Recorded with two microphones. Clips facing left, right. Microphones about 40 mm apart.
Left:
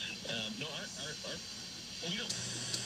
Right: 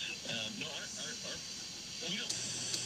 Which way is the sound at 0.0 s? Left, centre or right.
Centre.